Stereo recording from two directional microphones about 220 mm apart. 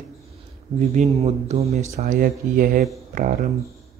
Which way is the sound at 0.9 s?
30° right (ahead or behind).